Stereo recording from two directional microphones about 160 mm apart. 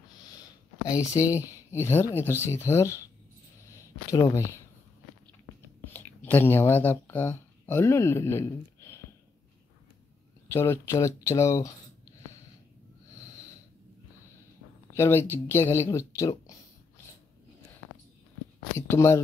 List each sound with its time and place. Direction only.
0.4 s a sound: 20° left (ahead or behind)
1.7 s speech: 15° left (ahead or behind)
5.9 s speech: 10° left (ahead or behind)
10.5 s speech: 15° left (ahead or behind)
15.0 s speech: 15° left (ahead or behind)
18.8 s speech: 15° left (ahead or behind)